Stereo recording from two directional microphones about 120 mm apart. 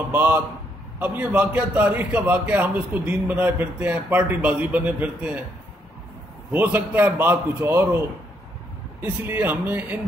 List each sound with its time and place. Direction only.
0.1 s a man's voice: 15° right (ahead or behind)
6.5 s a man's voice: 15° right (ahead or behind)
9.0 s a man's voice: 15° right (ahead or behind)